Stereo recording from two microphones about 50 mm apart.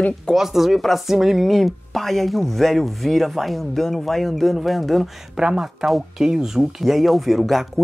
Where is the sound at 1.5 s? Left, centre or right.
Centre.